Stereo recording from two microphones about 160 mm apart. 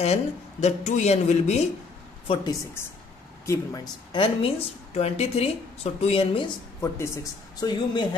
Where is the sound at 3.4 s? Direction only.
25° left (ahead or behind).